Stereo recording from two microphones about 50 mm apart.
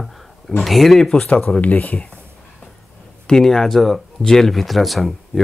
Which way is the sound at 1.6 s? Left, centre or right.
Left.